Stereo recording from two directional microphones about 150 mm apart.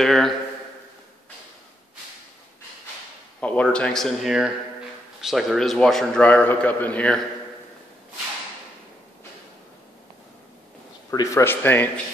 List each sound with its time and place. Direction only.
0.0 s a man's voice: centre (ahead or behind)
3.3 s a man's voice: 10° left (ahead or behind)
11.1 s speech: 20° left (ahead or behind)